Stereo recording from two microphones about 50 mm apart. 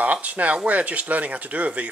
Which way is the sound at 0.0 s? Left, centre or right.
Right.